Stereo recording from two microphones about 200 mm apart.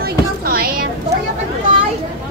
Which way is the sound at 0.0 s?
50° right (ahead or behind).